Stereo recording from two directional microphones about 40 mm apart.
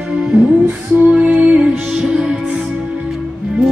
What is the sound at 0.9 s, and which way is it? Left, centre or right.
Music, right.